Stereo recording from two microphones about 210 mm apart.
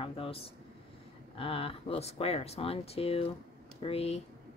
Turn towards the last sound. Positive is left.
turn(degrees=30)  # may be behind; listen again after turning